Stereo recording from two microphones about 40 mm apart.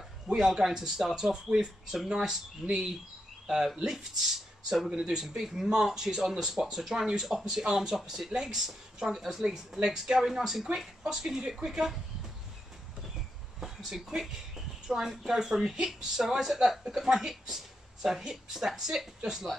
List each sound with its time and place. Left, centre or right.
0.4 s speech: centre
13.6 s speech: centre